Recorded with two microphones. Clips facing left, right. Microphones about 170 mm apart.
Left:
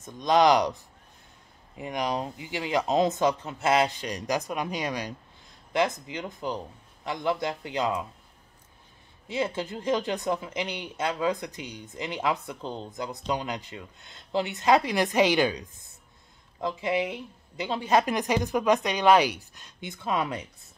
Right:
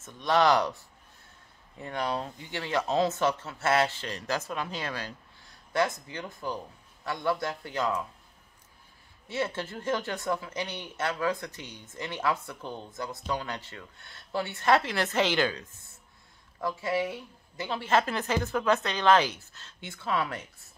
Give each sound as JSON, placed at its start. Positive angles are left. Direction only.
{"t": 0.0, "sound": "speech", "side_deg": 15}
{"t": 1.8, "sound": "a man's voice", "side_deg": 15}
{"t": 9.3, "sound": "speech", "side_deg": 15}